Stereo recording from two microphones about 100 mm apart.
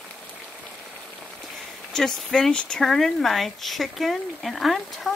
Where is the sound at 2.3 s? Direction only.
5° left (ahead or behind).